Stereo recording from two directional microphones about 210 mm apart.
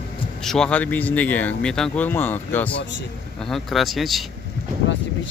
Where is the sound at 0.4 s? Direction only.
Centre (ahead or behind).